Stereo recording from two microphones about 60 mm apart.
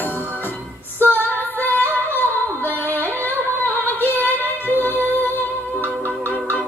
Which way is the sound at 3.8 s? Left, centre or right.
Left.